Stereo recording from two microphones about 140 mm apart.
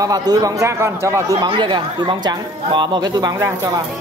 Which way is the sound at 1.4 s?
35° right (ahead or behind).